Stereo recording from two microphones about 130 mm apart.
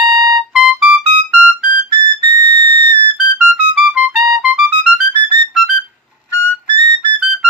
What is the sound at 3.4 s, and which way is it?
Music, 10° right (ahead or behind).